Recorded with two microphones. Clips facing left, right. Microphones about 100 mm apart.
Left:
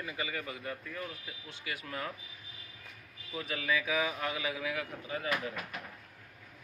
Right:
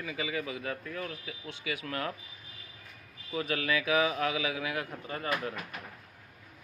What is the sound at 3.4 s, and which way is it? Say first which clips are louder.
A man's voice: right 3 dB; 65° right (ahead or behind).